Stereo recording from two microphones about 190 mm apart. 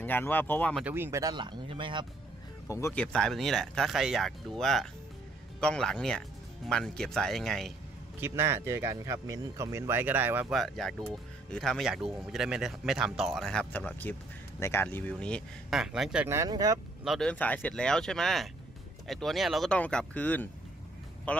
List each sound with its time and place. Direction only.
0.0 s speech: 10° left (ahead or behind)
0.8 s speech: 10° right (ahead or behind)
2.7 s speech: 10° left (ahead or behind)
8.2 s speech: 10° right (ahead or behind)
10.5 s speech: centre (ahead or behind); by 16.8 s 20° right (ahead or behind)
17.0 s speech: centre (ahead or behind)